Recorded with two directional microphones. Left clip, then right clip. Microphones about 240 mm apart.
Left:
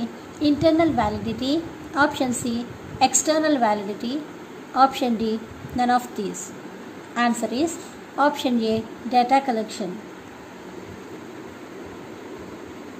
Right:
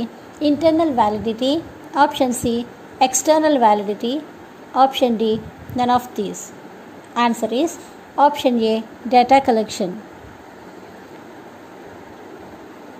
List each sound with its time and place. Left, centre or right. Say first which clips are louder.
0.0 s a woman's voice: right 3 dB; centre
7.4 s a woman's voice: right 5 dB; centre